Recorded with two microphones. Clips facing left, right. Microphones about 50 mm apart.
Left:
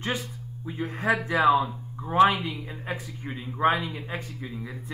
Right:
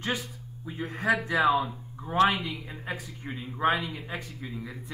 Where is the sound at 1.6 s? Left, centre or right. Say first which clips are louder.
Left 3 dB; centre.